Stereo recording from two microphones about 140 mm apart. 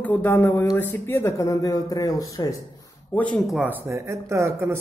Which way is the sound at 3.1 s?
10° left (ahead or behind).